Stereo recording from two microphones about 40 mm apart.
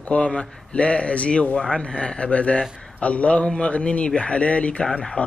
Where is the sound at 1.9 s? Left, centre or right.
Left.